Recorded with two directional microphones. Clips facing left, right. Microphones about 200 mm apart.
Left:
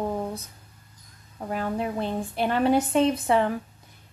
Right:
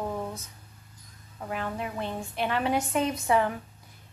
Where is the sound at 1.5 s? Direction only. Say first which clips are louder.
Left 5 dB; 35° left (ahead or behind).